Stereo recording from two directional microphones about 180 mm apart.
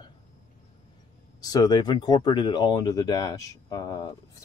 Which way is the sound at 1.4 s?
20° left (ahead or behind).